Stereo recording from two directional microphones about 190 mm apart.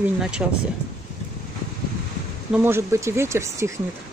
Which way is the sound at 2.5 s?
10° right (ahead or behind).